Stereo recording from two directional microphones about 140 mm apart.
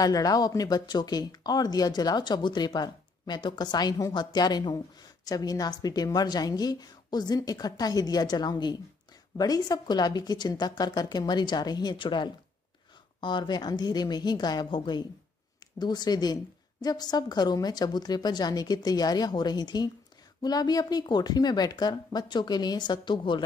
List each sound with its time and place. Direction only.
0.0 s speech: 25° left (ahead or behind)